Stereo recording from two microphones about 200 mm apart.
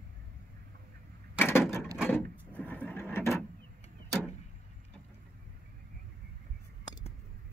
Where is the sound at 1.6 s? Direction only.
Centre (ahead or behind).